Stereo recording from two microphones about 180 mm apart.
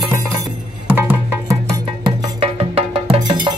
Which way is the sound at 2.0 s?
30° right (ahead or behind).